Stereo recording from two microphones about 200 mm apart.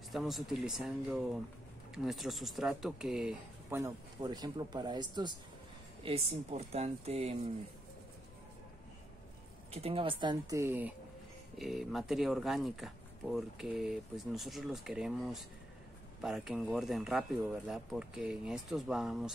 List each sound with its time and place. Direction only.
0.1 s speech: centre (ahead or behind)
3.8 s speech: 20° right (ahead or behind)
9.7 s speech: 30° right (ahead or behind); by 19.3 s centre (ahead or behind)